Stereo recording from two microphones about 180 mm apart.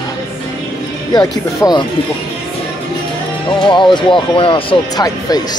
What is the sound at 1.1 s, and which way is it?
Speech, 20° left (ahead or behind).